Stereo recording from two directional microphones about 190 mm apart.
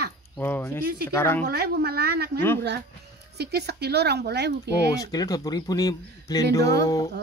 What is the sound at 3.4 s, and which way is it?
A woman's voice, 60° right (ahead or behind).